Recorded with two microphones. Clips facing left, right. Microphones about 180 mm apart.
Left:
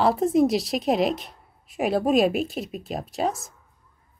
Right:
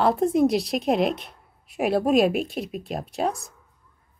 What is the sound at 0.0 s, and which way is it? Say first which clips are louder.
A woman's voice: even; centre (ahead or behind).